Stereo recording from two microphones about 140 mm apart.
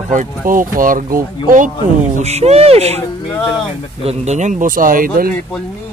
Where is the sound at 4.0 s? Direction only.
50° right (ahead or behind); by 5.3 s 90° right.